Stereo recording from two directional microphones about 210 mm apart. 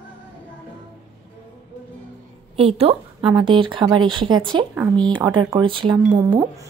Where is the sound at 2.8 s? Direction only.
25° right (ahead or behind).